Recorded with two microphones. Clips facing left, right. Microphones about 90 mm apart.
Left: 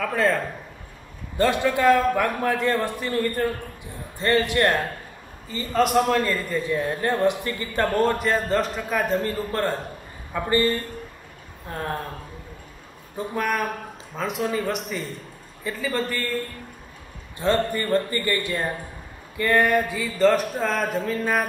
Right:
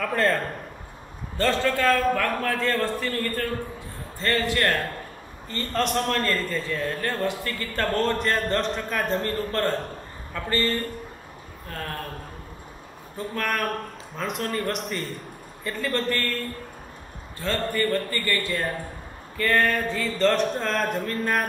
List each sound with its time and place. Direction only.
0.0 s speech: centre (ahead or behind)
1.4 s a man's voice: 15° left (ahead or behind)
5.5 s a man's voice: 5° left (ahead or behind)
13.2 s a man's voice: 15° left (ahead or behind)